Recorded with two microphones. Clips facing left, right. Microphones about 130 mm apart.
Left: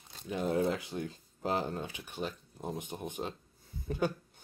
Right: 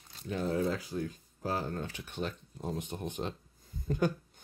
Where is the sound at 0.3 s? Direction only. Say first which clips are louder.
Left 1 dB; 15° left (ahead or behind).